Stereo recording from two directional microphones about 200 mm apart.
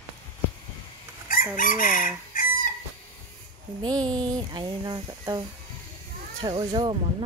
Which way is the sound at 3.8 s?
20° right (ahead or behind).